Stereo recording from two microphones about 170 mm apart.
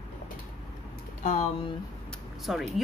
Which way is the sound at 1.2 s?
45° left (ahead or behind).